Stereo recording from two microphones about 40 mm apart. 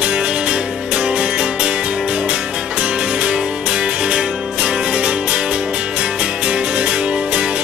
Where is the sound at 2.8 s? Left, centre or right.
Right.